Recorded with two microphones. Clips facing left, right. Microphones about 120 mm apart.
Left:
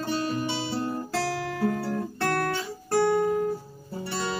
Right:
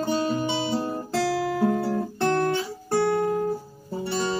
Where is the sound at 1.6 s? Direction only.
20° right (ahead or behind).